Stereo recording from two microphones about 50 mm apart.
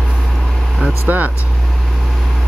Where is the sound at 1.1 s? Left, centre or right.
Right.